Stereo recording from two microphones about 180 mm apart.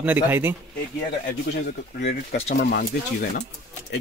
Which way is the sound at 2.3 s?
35° left (ahead or behind).